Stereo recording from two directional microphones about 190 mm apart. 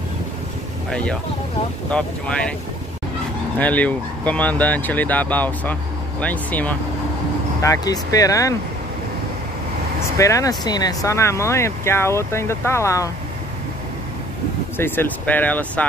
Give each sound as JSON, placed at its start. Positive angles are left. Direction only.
{"t": 0.8, "sound": "speech", "side_deg": 5}
{"t": 3.5, "sound": "speech", "side_deg": 10}
{"t": 10.1, "sound": "speech", "side_deg": 15}
{"t": 14.8, "sound": "speech", "side_deg": 10}